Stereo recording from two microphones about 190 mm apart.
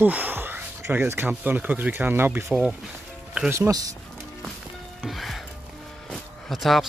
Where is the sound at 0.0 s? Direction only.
10° right (ahead or behind).